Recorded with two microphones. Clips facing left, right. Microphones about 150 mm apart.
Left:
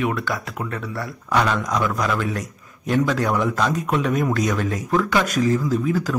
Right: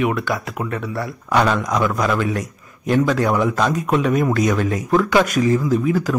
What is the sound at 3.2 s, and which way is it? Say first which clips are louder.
A man's voice: right 3 dB; 10° right (ahead or behind).